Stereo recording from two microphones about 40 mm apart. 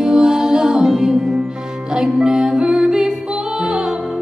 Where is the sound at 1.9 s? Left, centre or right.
Centre.